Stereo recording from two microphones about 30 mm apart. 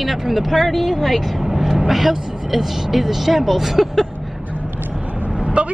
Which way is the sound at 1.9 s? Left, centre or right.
Centre.